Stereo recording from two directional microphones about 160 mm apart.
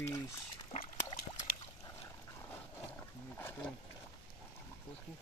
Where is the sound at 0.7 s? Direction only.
35° left (ahead or behind).